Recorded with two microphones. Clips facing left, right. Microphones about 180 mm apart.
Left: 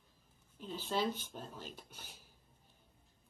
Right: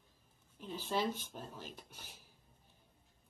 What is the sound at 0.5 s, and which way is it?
Speech, 5° right (ahead or behind).